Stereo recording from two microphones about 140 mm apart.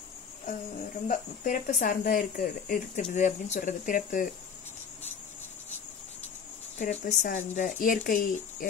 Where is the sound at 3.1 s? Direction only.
60° left (ahead or behind).